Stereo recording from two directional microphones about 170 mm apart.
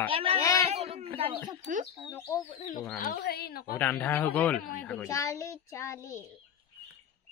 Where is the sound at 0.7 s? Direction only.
35° right (ahead or behind).